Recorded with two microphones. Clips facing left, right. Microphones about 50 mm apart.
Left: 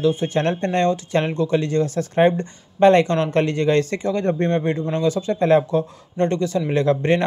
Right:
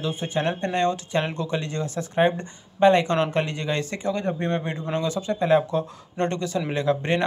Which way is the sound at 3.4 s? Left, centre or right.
Left.